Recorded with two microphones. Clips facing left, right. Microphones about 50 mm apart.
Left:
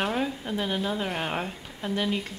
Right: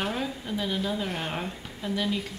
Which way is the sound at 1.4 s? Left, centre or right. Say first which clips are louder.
Left 1 dB; centre.